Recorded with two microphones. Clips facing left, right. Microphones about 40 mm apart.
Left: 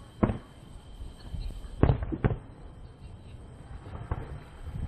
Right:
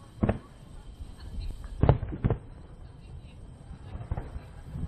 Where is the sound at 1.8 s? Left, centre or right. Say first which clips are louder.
Right 1 dB; left.